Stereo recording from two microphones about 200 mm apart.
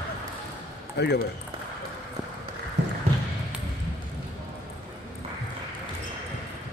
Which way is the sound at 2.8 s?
60° right (ahead or behind).